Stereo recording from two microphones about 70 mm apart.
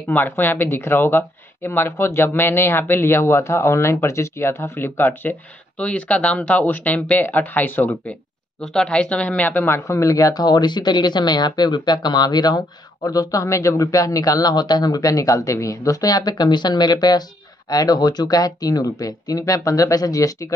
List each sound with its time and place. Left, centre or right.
0.1 s speech: left
5.8 s speech: centre
8.7 s a woman's voice: centre
9.8 s speech: left
13.5 s speech: left
13.9 s speech: left
17.6 s speech: left